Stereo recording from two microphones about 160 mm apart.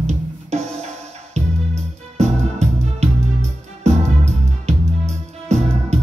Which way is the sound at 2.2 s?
45° right (ahead or behind).